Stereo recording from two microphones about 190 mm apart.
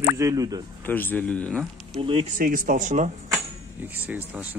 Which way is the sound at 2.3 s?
50° right (ahead or behind).